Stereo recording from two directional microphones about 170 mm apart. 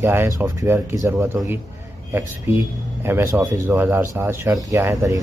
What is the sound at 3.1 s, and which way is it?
Speech, 15° right (ahead or behind).